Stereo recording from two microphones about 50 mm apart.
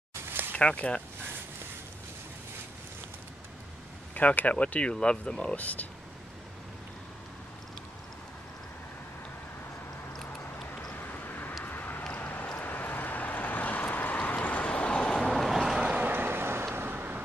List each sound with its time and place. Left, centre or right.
0.4 s a sound: right
0.7 s speech: left
4.1 s speech: left; by 5.6 s centre
5.6 s speech: left
11.0 s vehicle: left
12.1 s a sound: left
12.5 s vehicle: left
15.1 s vehicle: centre
15.8 s boat: right
16.1 s vehicle: right